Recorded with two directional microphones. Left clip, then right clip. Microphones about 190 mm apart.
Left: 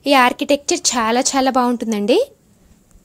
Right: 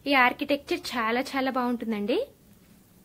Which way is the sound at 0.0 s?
45° left (ahead or behind).